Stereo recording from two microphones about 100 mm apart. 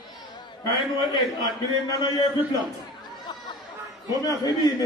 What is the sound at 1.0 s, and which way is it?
A man's voice, 40° left (ahead or behind).